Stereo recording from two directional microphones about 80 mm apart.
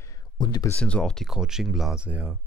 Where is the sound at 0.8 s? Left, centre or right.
Centre.